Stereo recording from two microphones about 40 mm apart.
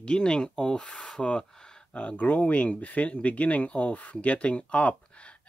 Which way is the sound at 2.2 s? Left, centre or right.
Left.